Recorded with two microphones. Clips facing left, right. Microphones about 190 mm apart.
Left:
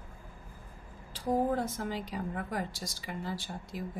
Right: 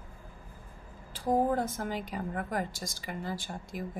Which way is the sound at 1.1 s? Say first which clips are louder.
Right 2 dB; 45° right (ahead or behind).